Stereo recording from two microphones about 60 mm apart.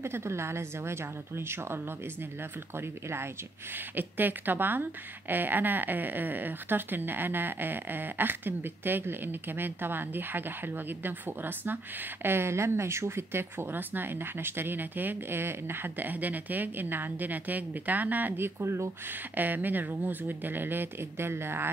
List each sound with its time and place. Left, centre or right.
0.0 s a woman's voice: right
2.8 s a woman's voice: right
19.3 s speech: right